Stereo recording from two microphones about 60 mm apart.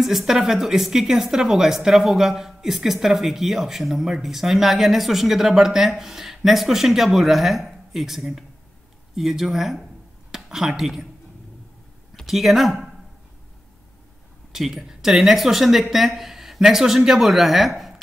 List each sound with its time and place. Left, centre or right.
0.0 s a woman's voice: centre
12.2 s speech: centre
14.5 s a woman's voice: centre